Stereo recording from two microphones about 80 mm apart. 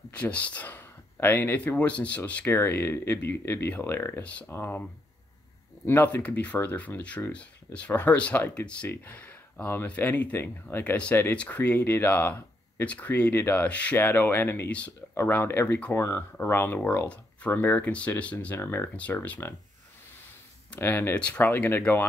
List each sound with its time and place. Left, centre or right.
0.1 s a sound: centre
1.7 s speech: centre
2.4 s speech: left
4.2 s speech: centre
5.9 s speech: left
18.6 s speech: left
18.9 s speech: centre
20.7 s speech: left
21.1 s speech: centre
21.5 s speech: left